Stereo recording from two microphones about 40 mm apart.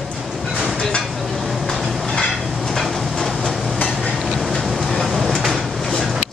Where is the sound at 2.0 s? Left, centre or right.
Centre.